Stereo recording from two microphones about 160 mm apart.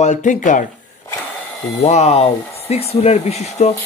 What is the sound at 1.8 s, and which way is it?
Speech, 45° left (ahead or behind).